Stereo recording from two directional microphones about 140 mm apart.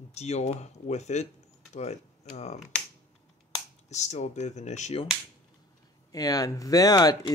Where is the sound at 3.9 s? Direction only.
55° left (ahead or behind).